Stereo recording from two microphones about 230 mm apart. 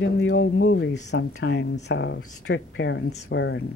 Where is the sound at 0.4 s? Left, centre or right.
Left.